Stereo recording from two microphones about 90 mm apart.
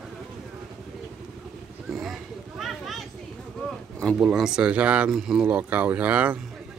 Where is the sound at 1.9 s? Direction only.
Centre (ahead or behind).